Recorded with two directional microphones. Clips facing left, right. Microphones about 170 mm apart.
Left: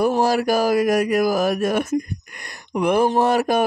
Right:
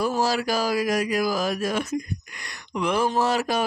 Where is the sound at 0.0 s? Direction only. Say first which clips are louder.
Left 5 dB; 55° left (ahead or behind).